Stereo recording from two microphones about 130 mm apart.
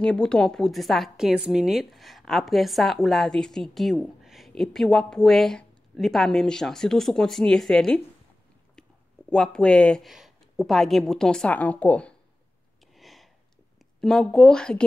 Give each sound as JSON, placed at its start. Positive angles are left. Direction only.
{"t": 0.0, "sound": "a woman's voice", "side_deg": 5}
{"t": 9.3, "sound": "a woman's voice", "side_deg": 5}
{"t": 12.9, "sound": "a sound", "side_deg": 0}
{"t": 14.0, "sound": "a woman's voice", "side_deg": 5}